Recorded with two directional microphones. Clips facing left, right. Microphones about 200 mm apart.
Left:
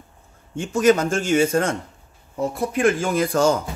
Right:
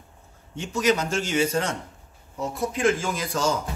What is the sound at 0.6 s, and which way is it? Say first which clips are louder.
Speech: left 6 dB; 50° left (ahead or behind).